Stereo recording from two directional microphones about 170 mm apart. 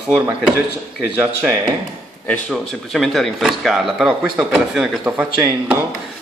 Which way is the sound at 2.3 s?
5° left (ahead or behind).